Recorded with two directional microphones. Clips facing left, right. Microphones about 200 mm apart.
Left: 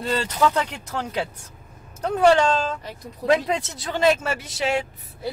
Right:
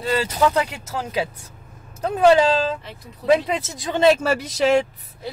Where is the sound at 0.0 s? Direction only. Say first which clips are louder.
Right 2 dB; 5° right (ahead or behind).